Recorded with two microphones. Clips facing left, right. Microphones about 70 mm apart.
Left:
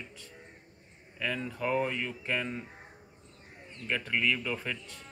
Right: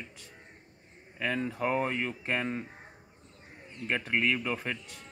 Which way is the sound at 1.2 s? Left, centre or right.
Right.